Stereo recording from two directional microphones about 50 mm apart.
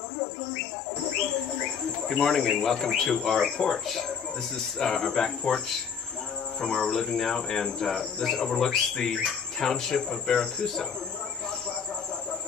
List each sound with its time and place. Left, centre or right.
2.0 s speech: centre
6.6 s speech: centre